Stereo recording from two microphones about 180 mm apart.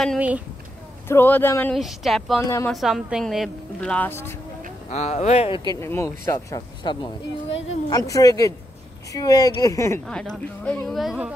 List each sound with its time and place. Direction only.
1.0 s speech: 10° left (ahead or behind)
1.8 s a woman's voice: centre (ahead or behind)
2.4 s speech: 15° left (ahead or behind)
2.7 s a woman's voice: centre (ahead or behind)
4.8 s speech: 40° left (ahead or behind)
5.8 s speech: 15° left (ahead or behind)
7.4 s speech: 90° left
7.9 s speech: 20° left (ahead or behind)
10.0 s a woman's voice: 5° left (ahead or behind)